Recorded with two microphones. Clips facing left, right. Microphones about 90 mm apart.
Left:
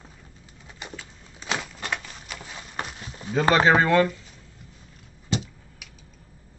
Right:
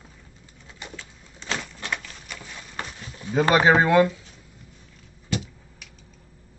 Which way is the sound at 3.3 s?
10° right (ahead or behind).